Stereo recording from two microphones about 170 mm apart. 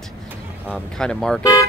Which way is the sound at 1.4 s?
20° left (ahead or behind).